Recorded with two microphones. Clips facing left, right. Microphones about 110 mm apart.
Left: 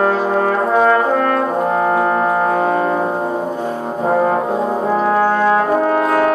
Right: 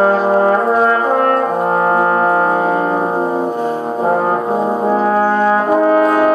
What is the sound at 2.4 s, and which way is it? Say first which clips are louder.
Music: right 1 dB; 15° right (ahead or behind).